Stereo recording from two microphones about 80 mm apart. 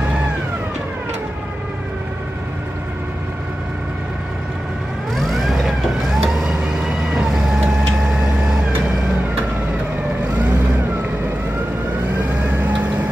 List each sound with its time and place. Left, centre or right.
5.1 s vehicle: centre
12.4 s vehicle: right